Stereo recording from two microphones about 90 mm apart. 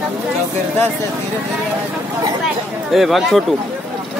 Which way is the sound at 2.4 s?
Centre (ahead or behind).